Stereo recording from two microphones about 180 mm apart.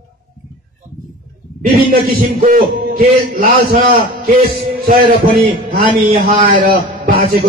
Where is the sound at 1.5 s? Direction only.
55° right (ahead or behind).